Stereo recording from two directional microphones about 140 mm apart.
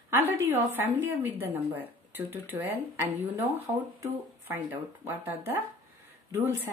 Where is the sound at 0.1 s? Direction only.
15° right (ahead or behind).